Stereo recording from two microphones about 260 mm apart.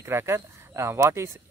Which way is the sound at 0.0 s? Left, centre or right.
Centre.